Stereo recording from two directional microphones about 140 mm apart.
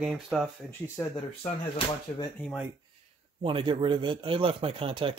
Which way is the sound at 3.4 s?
35° right (ahead or behind).